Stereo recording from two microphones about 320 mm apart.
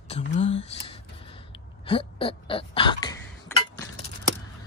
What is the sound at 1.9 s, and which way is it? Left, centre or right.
Throat clearing, centre.